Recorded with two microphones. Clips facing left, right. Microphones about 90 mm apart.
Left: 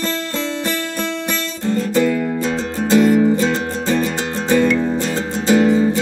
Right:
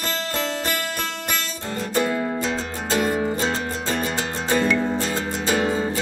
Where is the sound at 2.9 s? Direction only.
25° right (ahead or behind).